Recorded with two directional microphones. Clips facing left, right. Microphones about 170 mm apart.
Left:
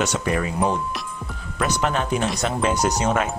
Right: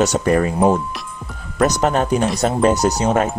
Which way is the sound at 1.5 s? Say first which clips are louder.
Right 6 dB; 40° right (ahead or behind).